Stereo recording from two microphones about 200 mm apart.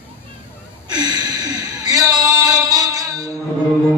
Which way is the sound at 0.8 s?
20° right (ahead or behind).